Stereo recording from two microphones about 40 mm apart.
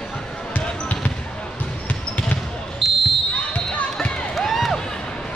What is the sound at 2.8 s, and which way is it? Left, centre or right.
Basketball bounce, centre.